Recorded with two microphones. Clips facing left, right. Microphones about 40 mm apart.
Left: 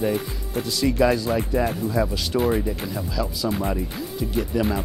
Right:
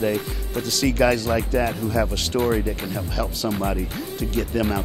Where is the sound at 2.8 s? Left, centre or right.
Centre.